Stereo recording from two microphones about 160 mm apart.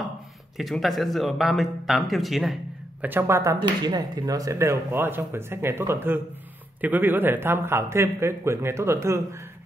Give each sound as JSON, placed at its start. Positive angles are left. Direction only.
{"t": 0.6, "sound": "speech", "side_deg": 0}
{"t": 3.1, "sound": "speech", "side_deg": -15}